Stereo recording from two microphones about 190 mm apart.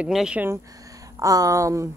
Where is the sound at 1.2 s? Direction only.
15° right (ahead or behind).